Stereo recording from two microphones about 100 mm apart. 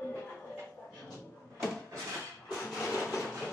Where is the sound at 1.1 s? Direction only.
5° left (ahead or behind).